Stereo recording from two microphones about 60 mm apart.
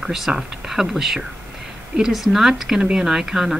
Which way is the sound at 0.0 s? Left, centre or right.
Centre.